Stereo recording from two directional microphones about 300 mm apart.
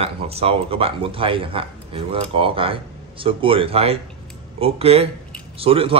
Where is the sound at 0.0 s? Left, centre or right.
Centre.